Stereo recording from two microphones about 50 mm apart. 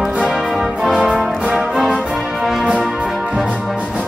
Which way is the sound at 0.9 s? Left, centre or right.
Centre.